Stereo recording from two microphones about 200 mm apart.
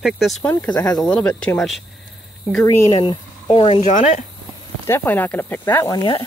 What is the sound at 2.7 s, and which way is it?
Speech, 20° left (ahead or behind).